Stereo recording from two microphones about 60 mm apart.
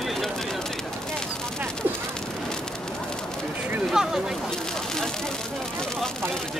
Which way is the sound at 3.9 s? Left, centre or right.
Centre.